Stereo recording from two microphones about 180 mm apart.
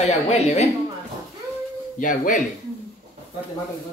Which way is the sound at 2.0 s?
50° left (ahead or behind).